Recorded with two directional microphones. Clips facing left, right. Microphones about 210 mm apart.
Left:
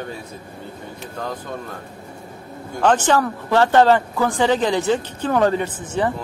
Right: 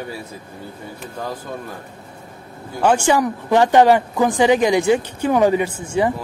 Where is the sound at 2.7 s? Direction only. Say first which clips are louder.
Right 1 dB; 10° right (ahead or behind).